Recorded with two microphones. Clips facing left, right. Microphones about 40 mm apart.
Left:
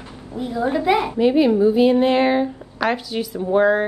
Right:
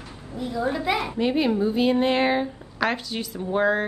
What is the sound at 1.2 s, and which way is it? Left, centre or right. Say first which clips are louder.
Speech: left 7 dB; centre.